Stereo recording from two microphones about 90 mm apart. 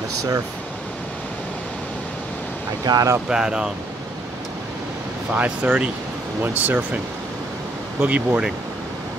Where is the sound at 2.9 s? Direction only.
50° right (ahead or behind).